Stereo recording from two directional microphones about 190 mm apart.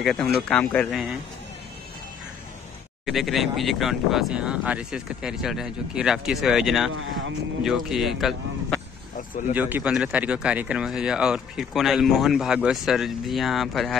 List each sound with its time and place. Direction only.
0.0 s speech: centre (ahead or behind)
3.1 s speech: centre (ahead or behind)
6.9 s speech: 90° right
7.6 s speech: centre (ahead or behind)